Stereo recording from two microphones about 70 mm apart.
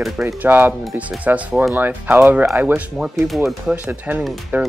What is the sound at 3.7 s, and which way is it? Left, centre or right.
Speech, right.